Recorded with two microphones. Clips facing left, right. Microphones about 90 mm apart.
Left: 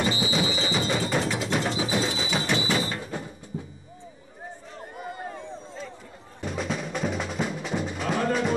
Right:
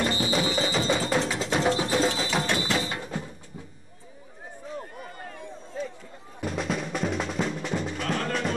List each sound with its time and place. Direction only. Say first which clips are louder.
0.0 s music: even; 5° left (ahead or behind)
5.0 s a sound: left 5 dB; 20° left (ahead or behind)
6.4 s music: right 1 dB; centre (ahead or behind)